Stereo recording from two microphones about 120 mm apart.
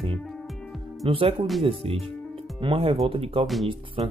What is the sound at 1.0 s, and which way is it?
Speech, 50° right (ahead or behind).